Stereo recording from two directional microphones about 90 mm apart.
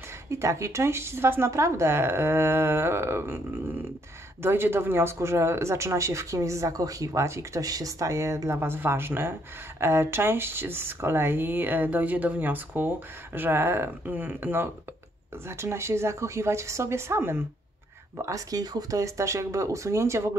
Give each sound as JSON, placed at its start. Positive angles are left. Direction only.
{"t": 0.3, "sound": "speech", "side_deg": -35}
{"t": 18.1, "sound": "speech", "side_deg": -40}